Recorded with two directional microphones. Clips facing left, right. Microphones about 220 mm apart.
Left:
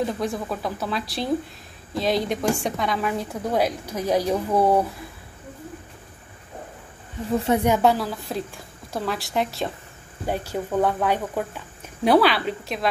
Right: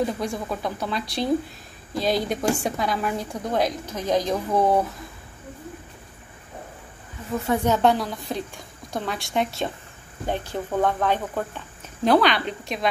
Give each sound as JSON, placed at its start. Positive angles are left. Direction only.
{"t": 0.0, "sound": "a woman's voice", "side_deg": 0}
{"t": 7.2, "sound": "speech", "side_deg": 30}
{"t": 7.5, "sound": "a woman's voice", "side_deg": 10}